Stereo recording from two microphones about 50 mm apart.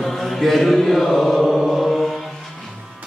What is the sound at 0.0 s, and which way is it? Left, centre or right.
Chant, centre.